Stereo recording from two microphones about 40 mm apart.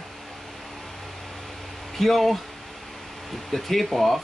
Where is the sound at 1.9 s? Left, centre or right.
Centre.